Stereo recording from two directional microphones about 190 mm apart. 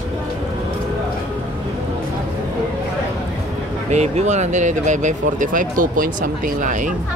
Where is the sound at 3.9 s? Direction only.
35° right (ahead or behind).